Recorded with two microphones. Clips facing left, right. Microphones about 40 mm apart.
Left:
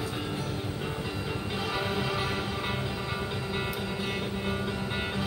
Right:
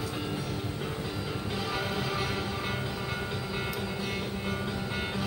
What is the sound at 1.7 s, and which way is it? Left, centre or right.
Music, left.